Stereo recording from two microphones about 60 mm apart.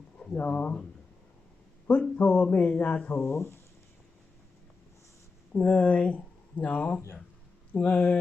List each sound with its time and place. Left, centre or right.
0.4 s speech: left
1.9 s speech: left
3.1 s speech: left
5.5 s speech: left